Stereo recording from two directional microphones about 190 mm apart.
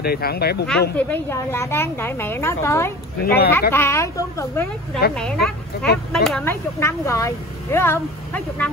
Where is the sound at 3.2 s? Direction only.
55° left (ahead or behind).